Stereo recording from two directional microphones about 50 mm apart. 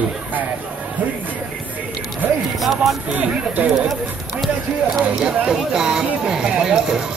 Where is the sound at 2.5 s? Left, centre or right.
Centre.